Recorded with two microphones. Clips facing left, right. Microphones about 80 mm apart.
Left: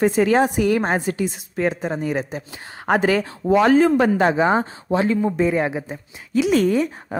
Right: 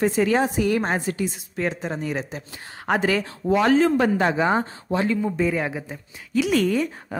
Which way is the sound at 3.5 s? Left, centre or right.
Centre.